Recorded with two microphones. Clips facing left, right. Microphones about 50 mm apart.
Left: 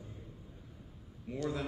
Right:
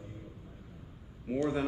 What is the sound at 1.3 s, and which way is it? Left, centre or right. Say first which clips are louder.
Speech: right 6 dB; right.